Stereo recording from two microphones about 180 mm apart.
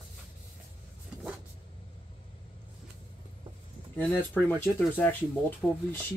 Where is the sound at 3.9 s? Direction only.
10° left (ahead or behind).